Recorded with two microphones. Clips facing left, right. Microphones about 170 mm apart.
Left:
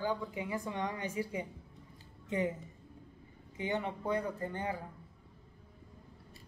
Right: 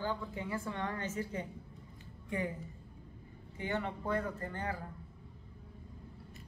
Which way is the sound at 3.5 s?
20° left (ahead or behind).